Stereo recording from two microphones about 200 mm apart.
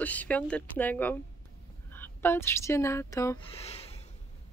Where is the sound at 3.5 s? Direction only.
30° left (ahead or behind).